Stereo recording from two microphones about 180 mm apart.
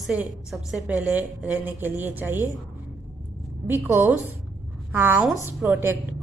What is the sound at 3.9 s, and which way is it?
A woman's voice, 10° right (ahead or behind).